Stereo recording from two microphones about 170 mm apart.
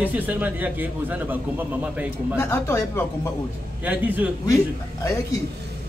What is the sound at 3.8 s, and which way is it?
Speech, 10° right (ahead or behind).